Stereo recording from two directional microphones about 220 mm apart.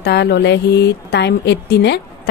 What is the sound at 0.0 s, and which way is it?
Speech, 50° left (ahead or behind).